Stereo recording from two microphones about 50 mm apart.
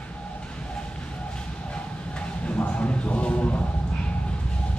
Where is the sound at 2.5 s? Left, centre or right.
Left.